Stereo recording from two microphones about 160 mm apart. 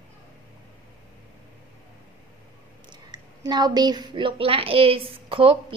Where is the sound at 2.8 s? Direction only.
25° right (ahead or behind).